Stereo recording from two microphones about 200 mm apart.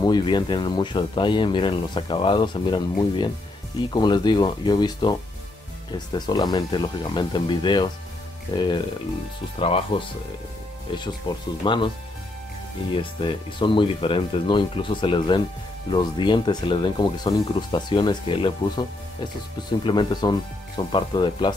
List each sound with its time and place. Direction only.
0.0 s speech: 20° left (ahead or behind)
12.9 s speech: 25° left (ahead or behind)